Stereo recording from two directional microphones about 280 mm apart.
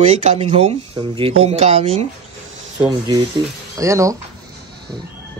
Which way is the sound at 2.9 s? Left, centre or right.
Centre.